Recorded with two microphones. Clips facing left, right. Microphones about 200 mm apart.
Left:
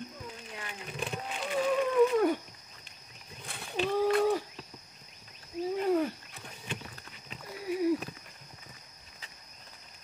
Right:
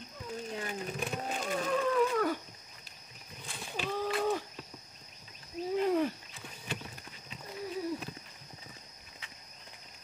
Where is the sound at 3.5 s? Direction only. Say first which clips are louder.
Even; 60° left (ahead or behind).